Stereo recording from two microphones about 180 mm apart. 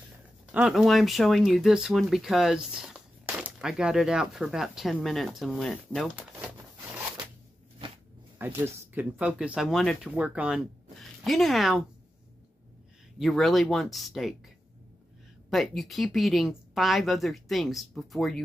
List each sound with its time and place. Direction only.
0.5 s speech: 5° right (ahead or behind)
7.8 s a sound: 30° right (ahead or behind)
8.4 s speech: 10° right (ahead or behind)
13.2 s speech: centre (ahead or behind)
15.5 s speech: centre (ahead or behind)